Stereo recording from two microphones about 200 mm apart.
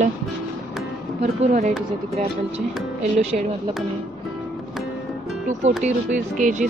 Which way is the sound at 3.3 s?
40° right (ahead or behind).